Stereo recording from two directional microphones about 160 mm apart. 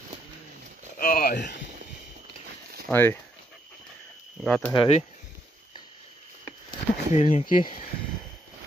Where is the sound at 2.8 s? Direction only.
15° left (ahead or behind).